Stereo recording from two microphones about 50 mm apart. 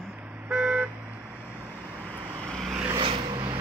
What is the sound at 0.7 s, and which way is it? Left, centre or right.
Vehicle, right.